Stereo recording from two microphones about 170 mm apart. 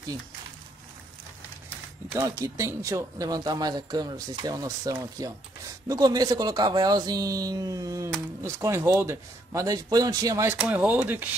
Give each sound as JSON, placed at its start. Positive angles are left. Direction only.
{"t": 2.1, "sound": "speech", "side_deg": -20}